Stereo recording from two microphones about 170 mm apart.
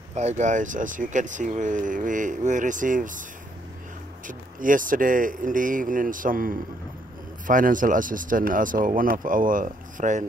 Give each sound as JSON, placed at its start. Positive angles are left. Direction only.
{"t": 0.1, "sound": "speech", "side_deg": -40}
{"t": 4.3, "sound": "speech", "side_deg": -50}